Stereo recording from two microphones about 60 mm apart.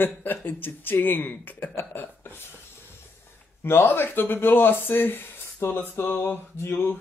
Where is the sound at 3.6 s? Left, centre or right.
Left.